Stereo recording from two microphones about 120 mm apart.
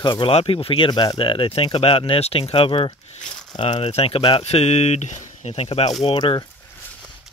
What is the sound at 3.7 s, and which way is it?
Speech, 60° left (ahead or behind).